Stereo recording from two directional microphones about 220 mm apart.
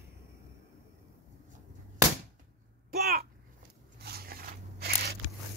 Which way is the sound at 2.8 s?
45° right (ahead or behind).